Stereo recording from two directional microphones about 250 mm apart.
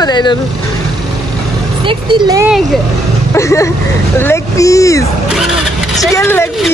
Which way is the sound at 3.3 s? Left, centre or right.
Centre.